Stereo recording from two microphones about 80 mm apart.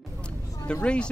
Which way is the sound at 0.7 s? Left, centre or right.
Centre.